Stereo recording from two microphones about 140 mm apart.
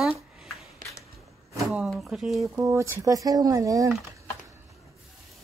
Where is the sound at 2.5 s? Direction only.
20° right (ahead or behind).